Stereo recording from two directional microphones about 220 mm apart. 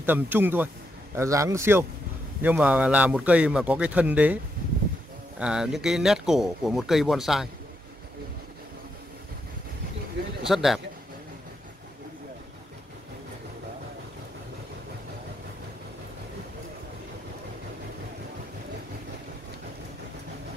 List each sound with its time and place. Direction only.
0.0 s a man's voice: 10° right (ahead or behind)
5.4 s speech: 5° right (ahead or behind)
10.5 s speech: centre (ahead or behind)